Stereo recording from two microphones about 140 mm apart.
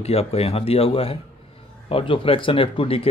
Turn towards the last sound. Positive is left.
turn(degrees=40)  # may be behind; listen again after turning